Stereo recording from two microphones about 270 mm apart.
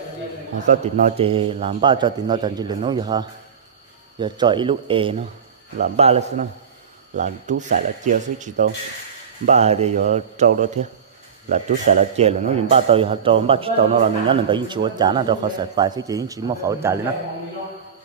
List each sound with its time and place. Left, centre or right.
0.7 s a man's voice: right